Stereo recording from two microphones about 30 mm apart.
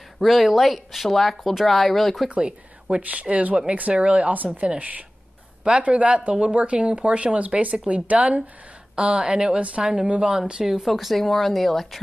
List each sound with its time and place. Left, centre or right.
0.2 s speech: centre
2.3 s speech: right
3.0 s speech: right
3.9 s speech: right
4.2 s speech: right
4.6 s speech: right
5.6 s speech: right
9.9 s speech: right
10.2 s speech: right
10.6 s speech: centre
11.1 s speech: centre